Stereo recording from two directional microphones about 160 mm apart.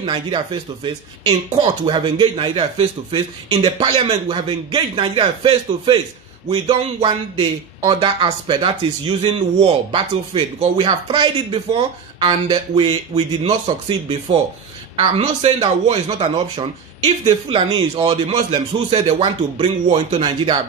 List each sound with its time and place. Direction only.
0.0 s speech: 30° right (ahead or behind)
1.5 s speech: 35° right (ahead or behind)